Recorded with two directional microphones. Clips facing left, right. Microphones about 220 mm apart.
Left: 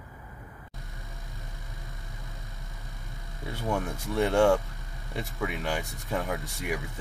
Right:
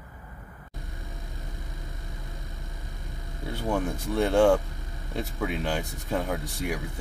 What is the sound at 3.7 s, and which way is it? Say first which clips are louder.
Speech: right 2 dB; centre (ahead or behind).